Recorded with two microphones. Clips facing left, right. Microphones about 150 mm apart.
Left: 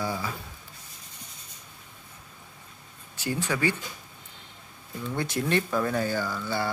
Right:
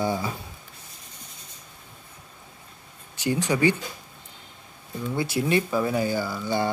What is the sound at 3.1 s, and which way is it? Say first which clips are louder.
Speech: right 5 dB; 15° right (ahead or behind).